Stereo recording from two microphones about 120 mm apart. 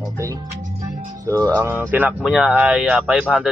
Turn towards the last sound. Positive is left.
turn(degrees=-10)  # may be behind; listen again after turning